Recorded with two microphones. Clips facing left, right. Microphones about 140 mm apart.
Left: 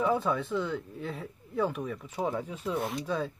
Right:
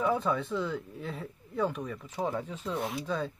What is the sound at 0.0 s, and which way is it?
Speech, centre (ahead or behind).